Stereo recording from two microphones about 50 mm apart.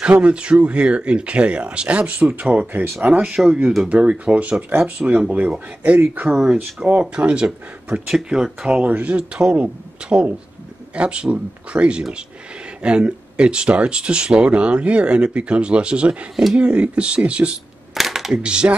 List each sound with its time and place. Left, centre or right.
0.0 s speech: right
2.7 s speech: right
3.3 s speech: centre
3.9 s speech: right
6.3 s speech: centre
7.0 s speech: right
8.8 s speech: right
17.9 s a sound: centre
18.4 s speech: centre